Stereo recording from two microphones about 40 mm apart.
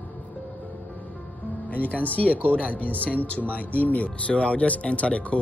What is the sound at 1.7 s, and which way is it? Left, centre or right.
Speech, left.